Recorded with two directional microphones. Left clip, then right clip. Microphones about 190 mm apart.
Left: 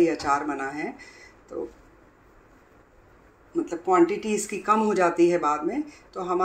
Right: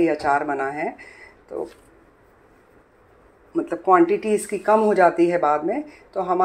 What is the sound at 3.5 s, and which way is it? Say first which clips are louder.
Speech: right 5 dB; 20° right (ahead or behind).